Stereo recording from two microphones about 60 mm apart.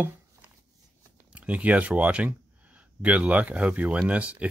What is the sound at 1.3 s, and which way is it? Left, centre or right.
Speech, right.